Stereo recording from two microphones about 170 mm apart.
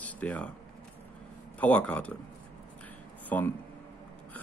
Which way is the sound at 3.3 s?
10° left (ahead or behind).